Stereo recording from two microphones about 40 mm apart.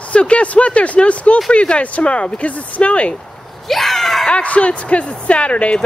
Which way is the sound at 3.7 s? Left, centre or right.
Centre.